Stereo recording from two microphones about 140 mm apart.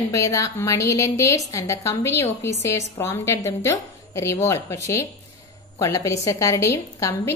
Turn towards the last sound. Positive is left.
turn(degrees=20)  # may be behind; listen again after turning